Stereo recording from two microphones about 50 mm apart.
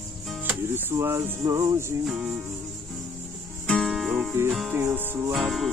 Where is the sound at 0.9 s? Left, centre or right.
Right.